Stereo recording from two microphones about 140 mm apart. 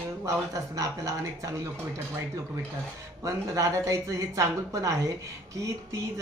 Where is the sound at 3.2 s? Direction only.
20° right (ahead or behind).